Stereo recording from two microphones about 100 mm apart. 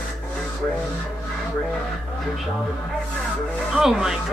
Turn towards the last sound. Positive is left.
turn(degrees=-5)  # may be behind; listen again after turning